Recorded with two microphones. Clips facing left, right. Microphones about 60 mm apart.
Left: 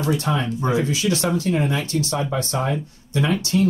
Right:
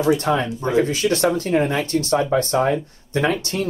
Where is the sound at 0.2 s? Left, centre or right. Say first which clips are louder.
Right 2 dB; right.